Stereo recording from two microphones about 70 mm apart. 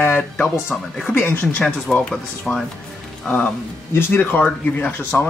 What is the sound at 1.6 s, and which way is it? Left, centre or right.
Speech, centre.